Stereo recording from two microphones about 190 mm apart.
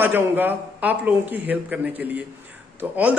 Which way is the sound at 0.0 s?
10° right (ahead or behind).